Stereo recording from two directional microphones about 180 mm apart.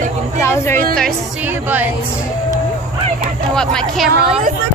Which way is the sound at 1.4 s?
10° right (ahead or behind).